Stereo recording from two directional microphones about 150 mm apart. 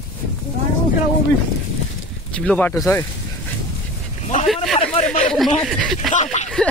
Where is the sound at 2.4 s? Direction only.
10° left (ahead or behind).